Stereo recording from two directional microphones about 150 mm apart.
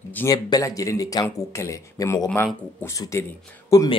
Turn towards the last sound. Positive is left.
turn(degrees=25)  # may be behind; listen again after turning